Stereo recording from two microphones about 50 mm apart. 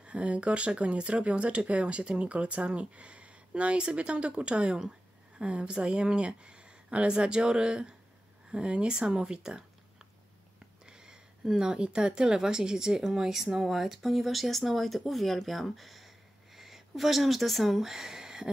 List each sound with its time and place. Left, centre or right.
0.0 s speech: right
10.9 s speech: centre